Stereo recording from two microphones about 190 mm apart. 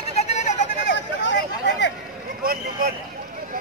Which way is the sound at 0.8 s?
70° left (ahead or behind).